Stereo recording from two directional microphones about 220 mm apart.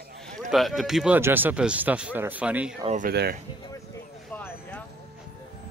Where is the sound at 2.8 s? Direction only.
35° right (ahead or behind).